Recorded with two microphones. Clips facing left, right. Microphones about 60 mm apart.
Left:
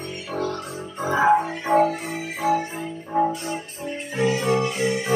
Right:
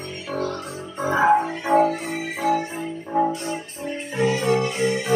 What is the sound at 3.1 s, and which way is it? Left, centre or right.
Music, centre.